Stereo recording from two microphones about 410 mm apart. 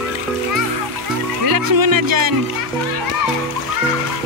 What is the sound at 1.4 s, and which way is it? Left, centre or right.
Music, right.